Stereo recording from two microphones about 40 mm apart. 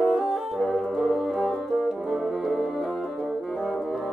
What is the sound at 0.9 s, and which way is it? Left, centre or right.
Brass instrument, centre.